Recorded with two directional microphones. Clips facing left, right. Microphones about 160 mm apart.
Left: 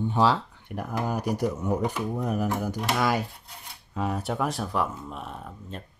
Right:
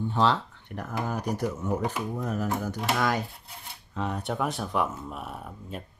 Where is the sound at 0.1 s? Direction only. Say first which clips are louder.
Left 1 dB; 10° left (ahead or behind).